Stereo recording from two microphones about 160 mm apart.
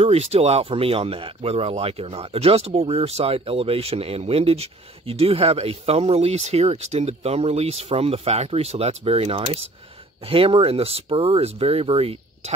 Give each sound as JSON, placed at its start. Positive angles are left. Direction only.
{"t": 0.0, "sound": "speech", "side_deg": -40}